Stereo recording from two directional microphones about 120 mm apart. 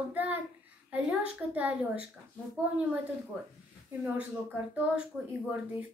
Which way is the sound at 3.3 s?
5° right (ahead or behind).